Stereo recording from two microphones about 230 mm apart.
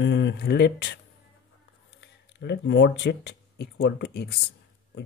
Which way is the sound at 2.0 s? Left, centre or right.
Left.